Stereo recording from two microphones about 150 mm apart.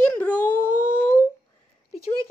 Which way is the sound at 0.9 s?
15° left (ahead or behind).